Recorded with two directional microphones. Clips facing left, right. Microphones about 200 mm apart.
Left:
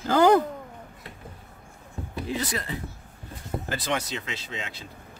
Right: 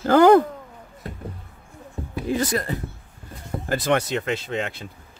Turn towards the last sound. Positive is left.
turn(degrees=-55)  # may be behind; listen again after turning